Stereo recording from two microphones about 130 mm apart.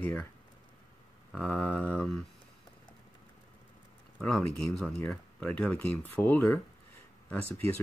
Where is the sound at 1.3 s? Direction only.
5° left (ahead or behind).